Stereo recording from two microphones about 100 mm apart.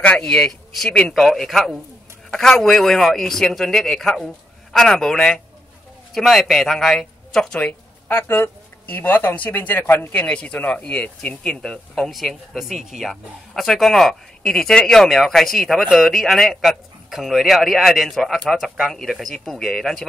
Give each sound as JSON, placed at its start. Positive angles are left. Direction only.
{"t": 0.0, "sound": "speech", "side_deg": 10}